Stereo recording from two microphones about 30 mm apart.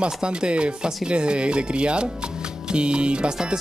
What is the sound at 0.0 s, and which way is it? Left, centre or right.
Speech, right.